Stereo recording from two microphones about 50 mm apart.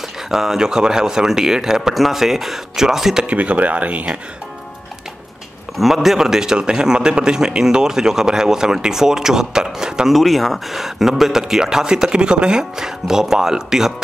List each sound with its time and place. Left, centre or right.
0.3 s a man's voice: centre
3.3 s speech: right
5.8 s a man's voice: centre
10.1 s a man's voice: centre